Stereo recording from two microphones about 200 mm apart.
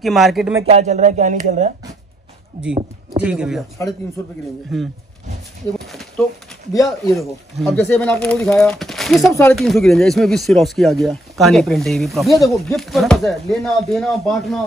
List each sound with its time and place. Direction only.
0.0 s speech: centre (ahead or behind)
0.7 s speech: 35° right (ahead or behind)
3.2 s speech: 5° right (ahead or behind)
4.7 s speech: centre (ahead or behind)
5.9 s a sound: centre (ahead or behind)
6.7 s speech: 15° left (ahead or behind)
7.2 s speech: centre (ahead or behind)